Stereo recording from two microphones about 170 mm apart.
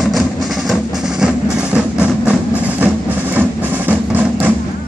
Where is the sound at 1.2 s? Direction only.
5° right (ahead or behind).